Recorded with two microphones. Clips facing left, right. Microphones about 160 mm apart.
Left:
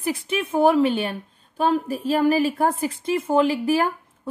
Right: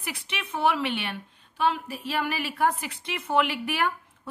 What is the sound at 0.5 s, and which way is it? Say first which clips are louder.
A woman's voice: left 8 dB; 35° left (ahead or behind).